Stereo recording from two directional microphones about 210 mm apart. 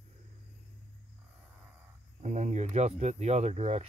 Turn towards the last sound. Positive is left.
turn(degrees=-30)  # may be behind; listen again after turning